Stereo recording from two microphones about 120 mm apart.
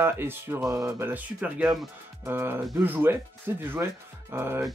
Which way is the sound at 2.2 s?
20° right (ahead or behind).